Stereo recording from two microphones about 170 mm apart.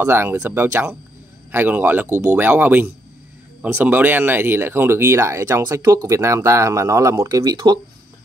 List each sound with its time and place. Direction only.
0.0 s speech: 15° right (ahead or behind)